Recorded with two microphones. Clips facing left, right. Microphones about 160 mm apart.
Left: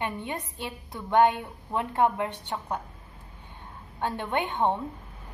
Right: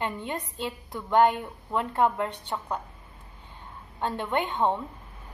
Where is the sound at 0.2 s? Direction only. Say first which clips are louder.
Right 2 dB; 15° left (ahead or behind).